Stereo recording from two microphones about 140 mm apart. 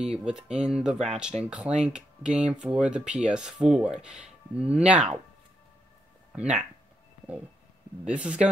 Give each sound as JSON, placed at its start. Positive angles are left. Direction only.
{"t": 0.0, "sound": "speech", "side_deg": -5}
{"t": 0.9, "sound": "speech", "side_deg": -50}
{"t": 1.2, "sound": "speech", "side_deg": -5}
{"t": 8.1, "sound": "speech", "side_deg": -5}